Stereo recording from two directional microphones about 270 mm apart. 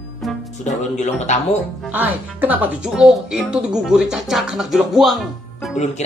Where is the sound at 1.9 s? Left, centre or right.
Centre.